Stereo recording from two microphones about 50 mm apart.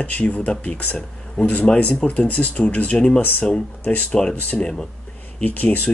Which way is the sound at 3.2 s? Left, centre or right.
Left.